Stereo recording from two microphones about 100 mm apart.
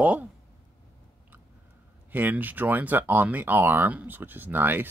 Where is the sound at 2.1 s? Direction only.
20° right (ahead or behind).